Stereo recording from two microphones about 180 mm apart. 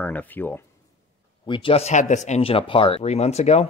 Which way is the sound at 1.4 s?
30° left (ahead or behind).